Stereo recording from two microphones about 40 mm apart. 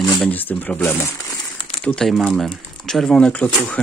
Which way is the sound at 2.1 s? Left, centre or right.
Centre.